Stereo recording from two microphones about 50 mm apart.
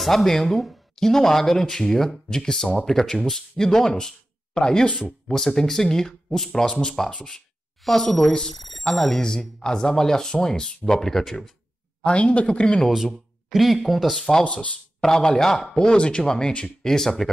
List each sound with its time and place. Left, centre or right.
0.0 s speech: centre
8.9 s speech: centre
9.2 s speech: centre
12.0 s speech: left
12.9 s speech: centre
14.4 s speech: left
15.0 s speech: centre